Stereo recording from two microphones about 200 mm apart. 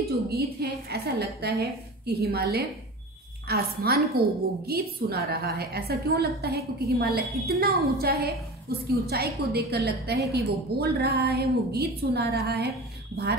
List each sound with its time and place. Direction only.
0.3 s a woman's voice: 50° right (ahead or behind)